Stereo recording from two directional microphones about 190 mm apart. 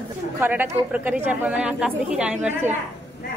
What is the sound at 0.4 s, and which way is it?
A woman's voice, 10° right (ahead or behind).